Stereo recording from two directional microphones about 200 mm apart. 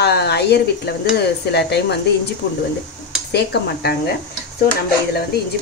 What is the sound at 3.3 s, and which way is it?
Speech, 55° left (ahead or behind).